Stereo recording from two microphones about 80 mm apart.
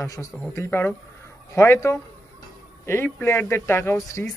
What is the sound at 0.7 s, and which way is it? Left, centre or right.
Speech, left.